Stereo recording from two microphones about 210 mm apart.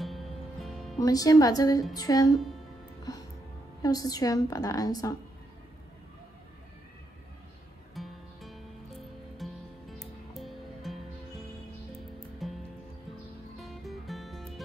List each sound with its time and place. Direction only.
0.0 s music: centre (ahead or behind)
1.0 s a woman's voice: 15° left (ahead or behind)
3.8 s a woman's voice: 15° left (ahead or behind)
7.9 s music: centre (ahead or behind)
12.4 s music: centre (ahead or behind)